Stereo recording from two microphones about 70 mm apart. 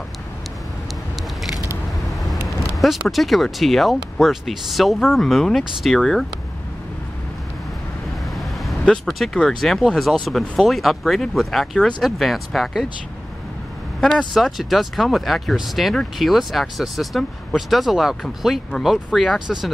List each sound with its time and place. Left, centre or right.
2.4 s vehicle: centre
3.1 s speech: centre
9.0 s speech: centre
14.0 s speech: centre
14.4 s speech: centre